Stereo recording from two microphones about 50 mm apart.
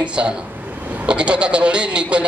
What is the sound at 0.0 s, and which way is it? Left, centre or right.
A man's voice, right.